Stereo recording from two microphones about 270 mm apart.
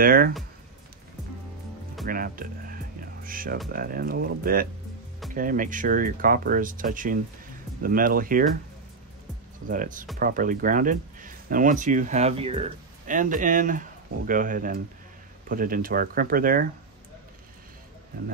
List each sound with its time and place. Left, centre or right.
0.0 s speech: right
2.0 s speech: right
9.7 s speech: right